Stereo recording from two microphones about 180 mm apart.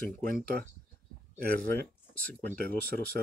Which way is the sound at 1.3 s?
50° right (ahead or behind).